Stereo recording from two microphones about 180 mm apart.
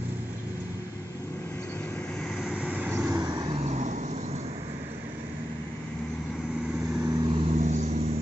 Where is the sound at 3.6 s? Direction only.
40° right (ahead or behind).